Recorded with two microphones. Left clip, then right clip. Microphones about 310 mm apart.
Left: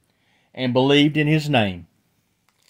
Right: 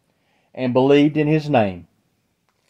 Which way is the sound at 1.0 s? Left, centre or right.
Left.